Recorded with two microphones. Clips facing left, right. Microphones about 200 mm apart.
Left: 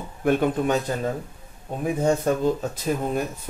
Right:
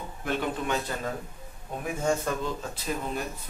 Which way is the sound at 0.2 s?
50° left (ahead or behind).